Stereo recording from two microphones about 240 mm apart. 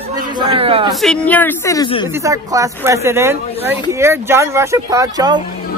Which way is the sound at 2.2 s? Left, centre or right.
Centre.